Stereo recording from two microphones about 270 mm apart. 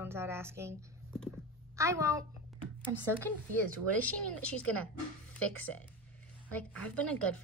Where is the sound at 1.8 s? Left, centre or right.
Centre.